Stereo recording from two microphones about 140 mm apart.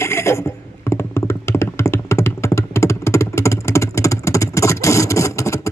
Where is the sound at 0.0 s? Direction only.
20° left (ahead or behind).